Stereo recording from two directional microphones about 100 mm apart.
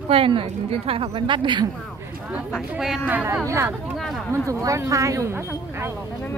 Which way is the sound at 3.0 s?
20° right (ahead or behind).